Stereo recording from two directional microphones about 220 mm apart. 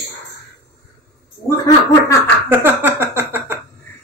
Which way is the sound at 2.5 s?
10° right (ahead or behind).